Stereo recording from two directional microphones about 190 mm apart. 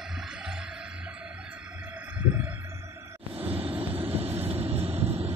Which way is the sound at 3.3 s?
30° right (ahead or behind).